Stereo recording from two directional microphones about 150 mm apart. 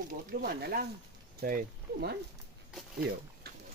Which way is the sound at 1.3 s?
80° right.